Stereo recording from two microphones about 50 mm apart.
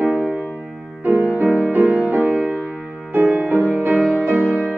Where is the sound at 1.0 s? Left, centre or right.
Right.